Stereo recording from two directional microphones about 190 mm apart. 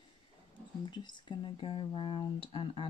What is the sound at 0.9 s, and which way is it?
Speech, 25° left (ahead or behind).